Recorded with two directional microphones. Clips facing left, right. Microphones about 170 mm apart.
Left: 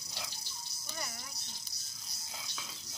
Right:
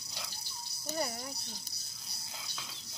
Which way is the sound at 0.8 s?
35° right (ahead or behind).